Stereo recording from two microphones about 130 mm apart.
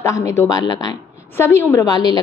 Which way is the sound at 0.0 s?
20° left (ahead or behind).